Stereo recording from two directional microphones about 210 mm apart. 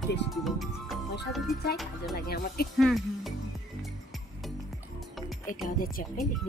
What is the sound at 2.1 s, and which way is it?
Speech, 45° left (ahead or behind).